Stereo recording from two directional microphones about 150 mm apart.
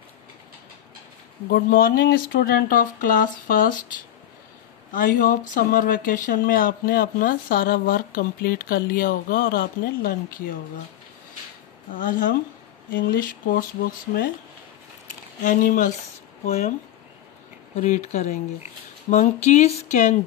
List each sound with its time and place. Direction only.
1.5 s speech: 90° left; by 3.7 s 70° left (ahead or behind)
4.9 s speech: 60° left (ahead or behind)
11.9 s a woman's voice: 65° left (ahead or behind)
13.0 s speech: 80° left
15.4 s a woman's voice: 60° left (ahead or behind)
16.4 s a sound: 45° left (ahead or behind)
17.7 s a sound: 50° left (ahead or behind)